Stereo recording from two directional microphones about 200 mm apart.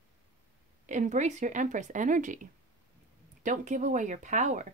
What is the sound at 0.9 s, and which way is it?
Speech, 35° right (ahead or behind).